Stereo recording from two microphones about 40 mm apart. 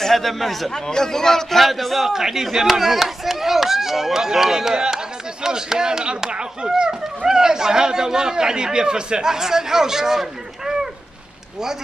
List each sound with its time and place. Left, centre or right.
0.0 s a man's voice: centre
0.8 s a man's voice: centre
2.0 s speech: centre